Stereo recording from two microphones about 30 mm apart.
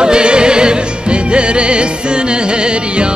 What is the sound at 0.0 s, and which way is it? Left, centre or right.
Music, right.